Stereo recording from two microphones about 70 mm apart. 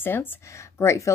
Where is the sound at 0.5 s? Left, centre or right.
Left.